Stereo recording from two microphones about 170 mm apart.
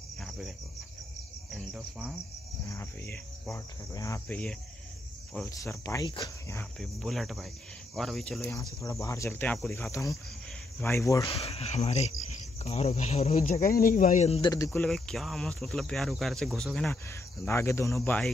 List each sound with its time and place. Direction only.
0.2 s cricket: centre (ahead or behind)
1.5 s speech: 5° right (ahead or behind)
2.7 s speech: 15° left (ahead or behind)
6.8 s speech: centre (ahead or behind); by 11.2 s 15° left (ahead or behind)
11.4 s cricket: 35° left (ahead or behind)
14.4 s speech: 20° left (ahead or behind)
14.8 s speech: 5° left (ahead or behind)